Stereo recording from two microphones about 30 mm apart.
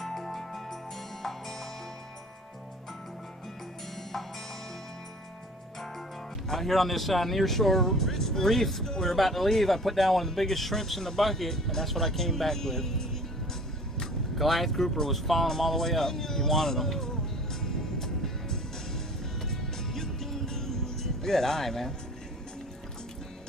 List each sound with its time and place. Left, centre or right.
0.0 s music: centre
6.5 s speech: centre
8.8 s speech: centre
9.1 s speech: centre
14.3 s music: centre